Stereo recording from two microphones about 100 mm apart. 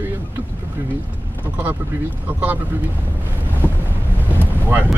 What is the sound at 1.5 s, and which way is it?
Speech, 15° right (ahead or behind).